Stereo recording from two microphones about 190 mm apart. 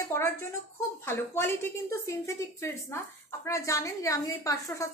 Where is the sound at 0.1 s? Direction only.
15° left (ahead or behind).